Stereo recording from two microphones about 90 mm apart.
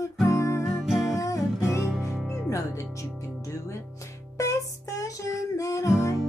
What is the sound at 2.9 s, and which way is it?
Music, 35° left (ahead or behind).